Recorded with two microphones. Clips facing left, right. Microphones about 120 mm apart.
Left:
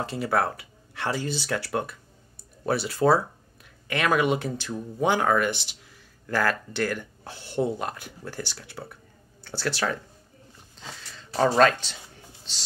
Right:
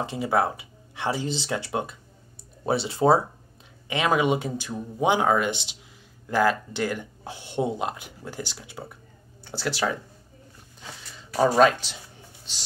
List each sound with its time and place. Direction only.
0.0 s speech: 15° right (ahead or behind)
11.3 s speech: 10° right (ahead or behind)